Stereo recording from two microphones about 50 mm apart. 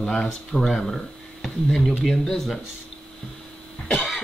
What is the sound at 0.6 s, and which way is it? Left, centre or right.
Speech, centre.